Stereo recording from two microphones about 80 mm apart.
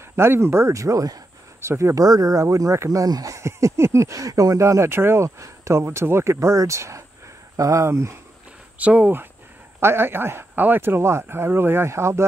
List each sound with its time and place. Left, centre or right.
0.1 s speech: right
8.7 s speech: centre; by 12.3 s right